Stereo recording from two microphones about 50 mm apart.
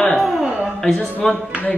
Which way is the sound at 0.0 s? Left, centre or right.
Centre.